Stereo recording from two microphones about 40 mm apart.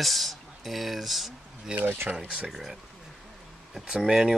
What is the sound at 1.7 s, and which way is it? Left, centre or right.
Speech, right.